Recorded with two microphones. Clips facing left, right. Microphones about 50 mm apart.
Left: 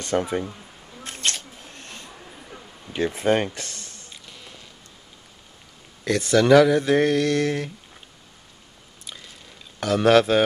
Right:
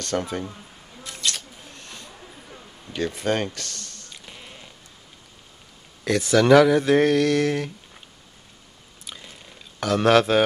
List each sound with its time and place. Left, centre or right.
0.0 s speech: centre
1.0 s single-lens reflex camera: left
1.7 s a sound: left
2.3 s a sound: centre
4.3 s insect: right
6.0 s speech: centre
9.8 s speech: centre